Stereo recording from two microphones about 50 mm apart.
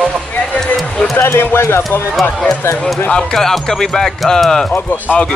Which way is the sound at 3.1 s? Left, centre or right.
Centre.